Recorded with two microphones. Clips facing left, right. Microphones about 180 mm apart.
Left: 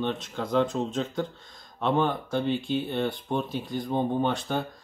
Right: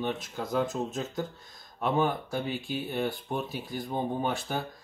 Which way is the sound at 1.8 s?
10° right (ahead or behind).